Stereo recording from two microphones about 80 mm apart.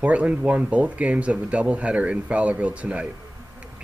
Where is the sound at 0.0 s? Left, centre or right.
Centre.